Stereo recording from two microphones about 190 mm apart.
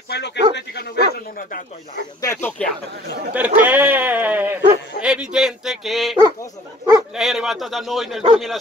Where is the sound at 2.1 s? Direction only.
15° left (ahead or behind).